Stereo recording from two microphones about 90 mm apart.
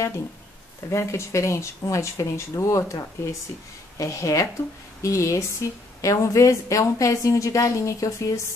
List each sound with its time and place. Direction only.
0.8 s a woman's voice: 30° left (ahead or behind)